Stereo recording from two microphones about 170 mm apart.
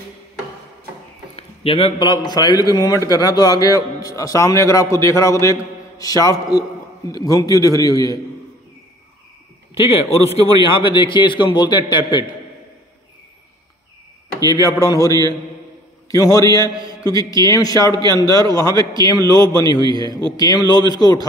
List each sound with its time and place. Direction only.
1.3 s a sound: 35° left (ahead or behind)
2.0 s a man's voice: 25° left (ahead or behind)
9.8 s a man's voice: 35° left (ahead or behind)
14.6 s a man's voice: 20° left (ahead or behind)